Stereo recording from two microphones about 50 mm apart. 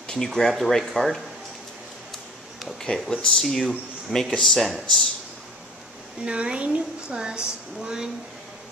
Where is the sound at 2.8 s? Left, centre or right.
Centre.